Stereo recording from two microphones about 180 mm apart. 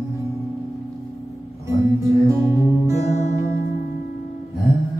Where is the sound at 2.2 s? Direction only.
15° right (ahead or behind).